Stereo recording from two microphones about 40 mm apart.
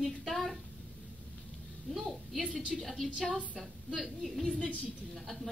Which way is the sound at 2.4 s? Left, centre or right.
Right.